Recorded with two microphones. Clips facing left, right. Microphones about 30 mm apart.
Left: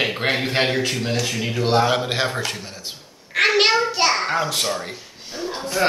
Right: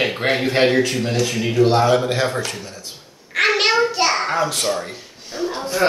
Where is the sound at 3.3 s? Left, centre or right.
Centre.